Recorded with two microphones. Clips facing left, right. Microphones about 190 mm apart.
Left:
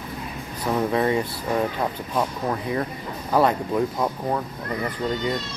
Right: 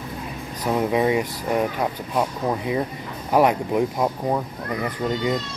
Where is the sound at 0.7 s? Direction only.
15° right (ahead or behind).